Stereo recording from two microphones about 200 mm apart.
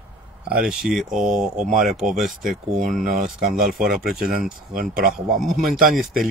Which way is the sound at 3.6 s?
Centre (ahead or behind).